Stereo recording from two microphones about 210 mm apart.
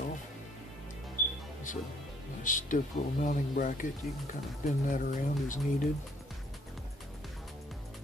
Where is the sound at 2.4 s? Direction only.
40° left (ahead or behind).